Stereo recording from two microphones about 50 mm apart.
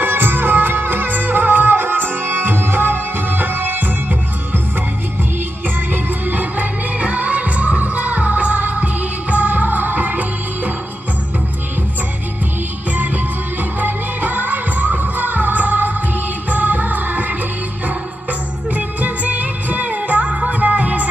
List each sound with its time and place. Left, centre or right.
0.0 s music: right
6.2 s music: right
12.9 s music: right
18.7 s music: right